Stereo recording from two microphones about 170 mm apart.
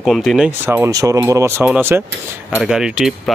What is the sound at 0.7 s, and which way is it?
Speech, 15° right (ahead or behind).